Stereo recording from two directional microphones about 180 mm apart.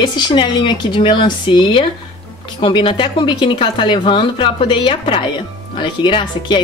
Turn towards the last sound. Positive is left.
turn(degrees=25)  # may be behind; listen again after turning